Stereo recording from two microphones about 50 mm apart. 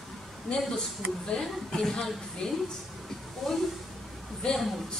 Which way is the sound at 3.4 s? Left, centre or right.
Centre.